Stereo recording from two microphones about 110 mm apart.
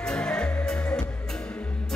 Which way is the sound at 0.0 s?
10° left (ahead or behind).